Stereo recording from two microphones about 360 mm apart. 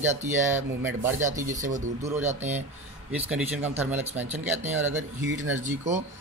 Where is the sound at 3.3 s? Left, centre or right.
Centre.